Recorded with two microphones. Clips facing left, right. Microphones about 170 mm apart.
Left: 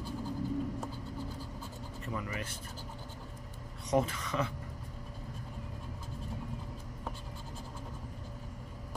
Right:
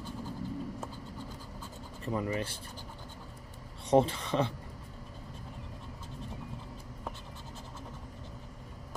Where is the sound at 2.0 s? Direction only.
35° right (ahead or behind).